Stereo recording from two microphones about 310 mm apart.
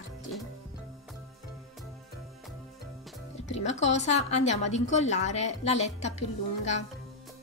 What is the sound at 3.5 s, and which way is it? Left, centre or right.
A woman's voice, left.